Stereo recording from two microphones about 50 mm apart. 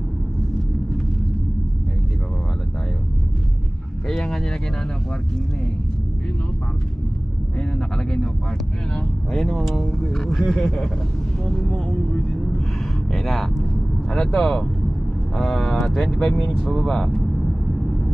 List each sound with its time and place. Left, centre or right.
4.1 s vehicle: centre
7.5 s speech: centre
9.3 s speech: centre
11.5 s a sound: centre
14.1 s speech: centre
15.8 s a sound: centre
16.1 s speech: centre